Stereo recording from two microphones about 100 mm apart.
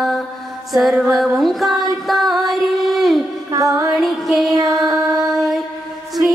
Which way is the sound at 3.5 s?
30° right (ahead or behind).